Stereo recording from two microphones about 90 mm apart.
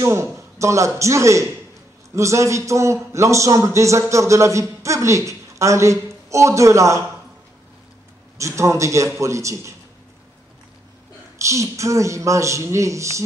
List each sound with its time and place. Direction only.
0.0 s a man's voice: 35° right (ahead or behind)
8.4 s a man's voice: 35° right (ahead or behind)
11.3 s a man's voice: 35° right (ahead or behind)